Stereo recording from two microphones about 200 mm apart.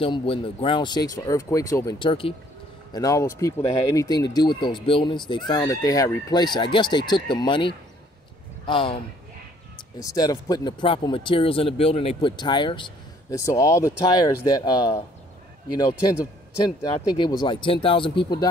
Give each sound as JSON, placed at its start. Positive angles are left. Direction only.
{"t": 0.0, "sound": "speech", "side_deg": 25}
{"t": 9.9, "sound": "speech", "side_deg": 20}